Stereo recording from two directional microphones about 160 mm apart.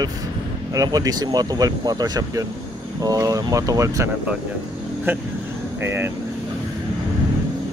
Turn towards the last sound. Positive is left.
turn(degrees=-15)  # may be behind; listen again after turning